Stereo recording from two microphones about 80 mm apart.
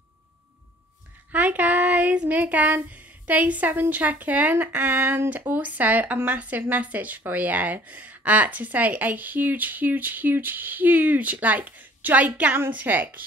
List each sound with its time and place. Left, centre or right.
1.3 s child singing: centre
3.9 s speech: centre